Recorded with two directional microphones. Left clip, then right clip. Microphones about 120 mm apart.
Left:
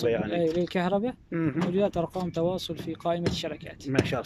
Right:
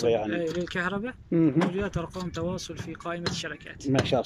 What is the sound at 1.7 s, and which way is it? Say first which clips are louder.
Speech: left 5 dB; 35° left (ahead or behind).